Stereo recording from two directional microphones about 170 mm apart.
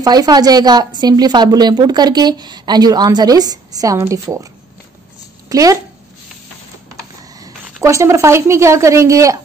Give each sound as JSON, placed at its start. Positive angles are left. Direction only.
{"t": 0.0, "sound": "speech", "side_deg": -25}
{"t": 5.5, "sound": "speech", "side_deg": -20}
{"t": 7.3, "sound": "a woman's voice", "side_deg": -20}